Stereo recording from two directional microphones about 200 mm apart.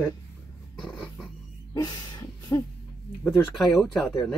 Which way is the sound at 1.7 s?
20° left (ahead or behind).